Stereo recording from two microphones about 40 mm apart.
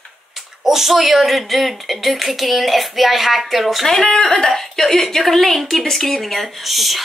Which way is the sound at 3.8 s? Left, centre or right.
Centre.